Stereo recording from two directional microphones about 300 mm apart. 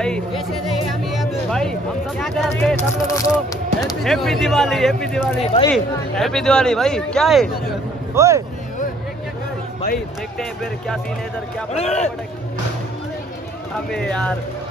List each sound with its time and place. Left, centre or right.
0.0 s music: centre
1.5 s speech: centre
5.4 s a man's voice: left
5.7 s speech: centre
8.1 s speech: centre
11.7 s a man's voice: left
13.8 s speech: centre